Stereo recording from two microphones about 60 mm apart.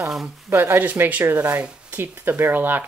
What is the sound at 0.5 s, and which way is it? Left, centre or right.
Speech, right.